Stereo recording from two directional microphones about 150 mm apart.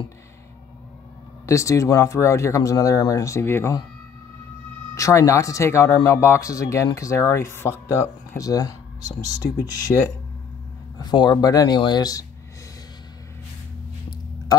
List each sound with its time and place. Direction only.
1.4 s speech: 20° left (ahead or behind)
4.9 s speech: 20° left (ahead or behind)